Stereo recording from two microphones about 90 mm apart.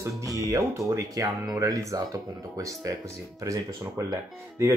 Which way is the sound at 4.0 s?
35° right (ahead or behind).